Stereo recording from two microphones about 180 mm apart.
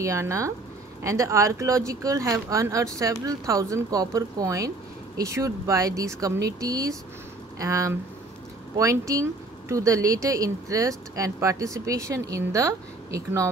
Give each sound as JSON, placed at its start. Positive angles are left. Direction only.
{"t": 0.0, "sound": "speech", "side_deg": -15}